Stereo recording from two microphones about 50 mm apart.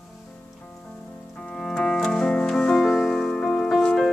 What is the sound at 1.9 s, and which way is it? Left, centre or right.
Music, centre.